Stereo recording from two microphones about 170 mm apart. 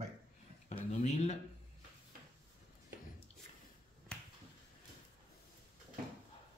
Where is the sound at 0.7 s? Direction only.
40° left (ahead or behind).